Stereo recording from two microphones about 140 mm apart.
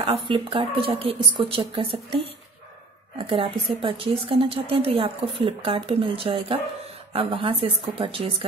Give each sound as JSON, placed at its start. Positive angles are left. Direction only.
{"t": 0.0, "sound": "speech", "side_deg": -40}